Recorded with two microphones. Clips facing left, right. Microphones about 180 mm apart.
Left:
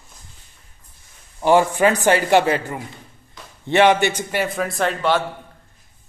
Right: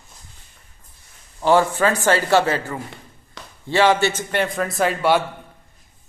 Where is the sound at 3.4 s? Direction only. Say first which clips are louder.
Right 1 dB; 80° right.